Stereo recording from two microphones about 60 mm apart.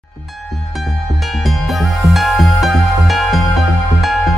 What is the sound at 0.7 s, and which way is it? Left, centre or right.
Music, centre.